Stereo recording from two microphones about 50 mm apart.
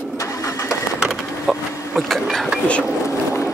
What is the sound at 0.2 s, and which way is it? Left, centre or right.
Vehicle, left.